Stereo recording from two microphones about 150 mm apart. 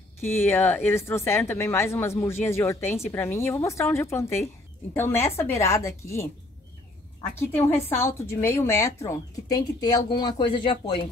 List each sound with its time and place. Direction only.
0.2 s speech: 15° left (ahead or behind)
7.3 s a woman's voice: 15° left (ahead or behind); by 11.1 s 35° left (ahead or behind)